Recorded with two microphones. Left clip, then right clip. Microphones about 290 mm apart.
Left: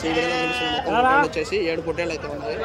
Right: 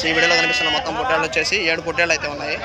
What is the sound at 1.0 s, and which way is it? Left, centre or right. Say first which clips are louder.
Speech: left 7 dB; left.